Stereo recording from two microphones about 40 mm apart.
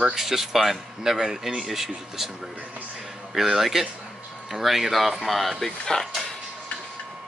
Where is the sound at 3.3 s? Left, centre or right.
Centre.